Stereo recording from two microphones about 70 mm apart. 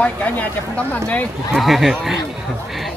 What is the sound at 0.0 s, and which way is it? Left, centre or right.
Speech, left.